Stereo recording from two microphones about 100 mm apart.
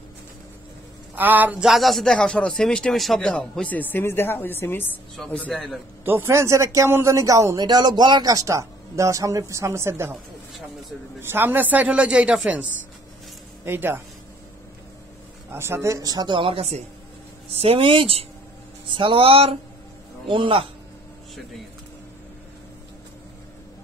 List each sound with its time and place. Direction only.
1.1 s a man's voice: 20° right (ahead or behind)
1.6 s speech: centre (ahead or behind); by 4.8 s 20° left (ahead or behind)
5.3 s speech: 10° left (ahead or behind)
6.0 s speech: 20° right (ahead or behind)
11.1 s a man's voice: 20° right (ahead or behind)
13.7 s speech: 20° right (ahead or behind)
15.5 s speech: 25° right (ahead or behind)
16.0 s speech: 40° right (ahead or behind)
16.3 s speech: 70° right (ahead or behind)
17.6 s speech: 70° right (ahead or behind)
20.2 s a man's voice: 60° right (ahead or behind)